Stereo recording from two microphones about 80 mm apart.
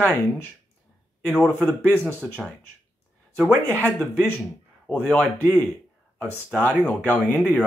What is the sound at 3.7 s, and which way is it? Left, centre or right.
Speech, left.